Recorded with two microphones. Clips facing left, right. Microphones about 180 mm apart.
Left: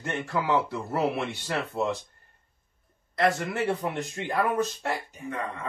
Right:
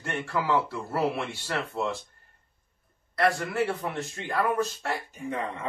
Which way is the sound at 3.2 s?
20° left (ahead or behind).